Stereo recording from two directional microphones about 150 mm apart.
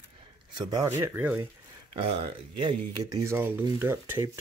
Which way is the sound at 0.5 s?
25° right (ahead or behind).